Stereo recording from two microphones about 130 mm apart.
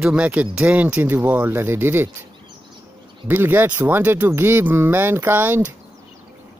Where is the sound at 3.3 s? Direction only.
15° right (ahead or behind).